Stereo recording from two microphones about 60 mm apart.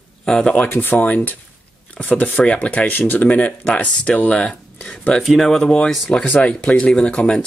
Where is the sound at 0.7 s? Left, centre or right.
Left.